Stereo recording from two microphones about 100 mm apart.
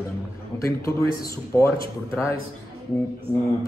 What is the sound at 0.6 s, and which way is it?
A woman's voice, 30° left (ahead or behind).